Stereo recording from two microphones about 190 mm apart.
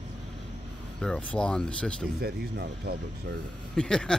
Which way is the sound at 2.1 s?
55° right (ahead or behind).